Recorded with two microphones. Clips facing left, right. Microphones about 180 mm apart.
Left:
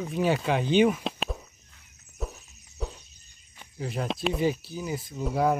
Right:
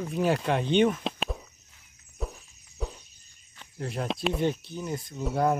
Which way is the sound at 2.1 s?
Centre (ahead or behind).